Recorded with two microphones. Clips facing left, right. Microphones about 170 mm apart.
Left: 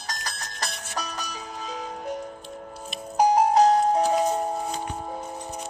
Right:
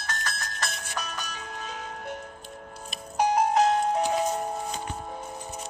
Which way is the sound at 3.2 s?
35° left (ahead or behind).